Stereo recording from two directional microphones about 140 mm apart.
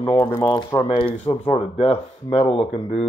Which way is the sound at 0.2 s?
25° left (ahead or behind).